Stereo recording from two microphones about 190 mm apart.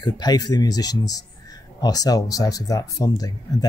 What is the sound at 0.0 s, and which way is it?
Speech, 20° left (ahead or behind).